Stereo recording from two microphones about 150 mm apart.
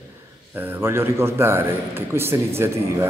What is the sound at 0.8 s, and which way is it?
A man's voice, 15° right (ahead or behind).